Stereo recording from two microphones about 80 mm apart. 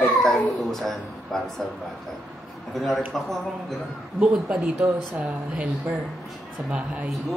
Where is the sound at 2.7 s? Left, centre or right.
Centre.